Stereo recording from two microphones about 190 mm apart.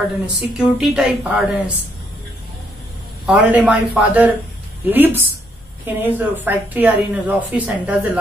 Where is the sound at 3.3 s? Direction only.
5° right (ahead or behind).